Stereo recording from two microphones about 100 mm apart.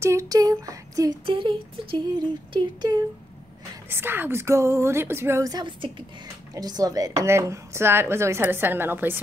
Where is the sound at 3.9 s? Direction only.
20° right (ahead or behind); by 7.1 s 40° right (ahead or behind).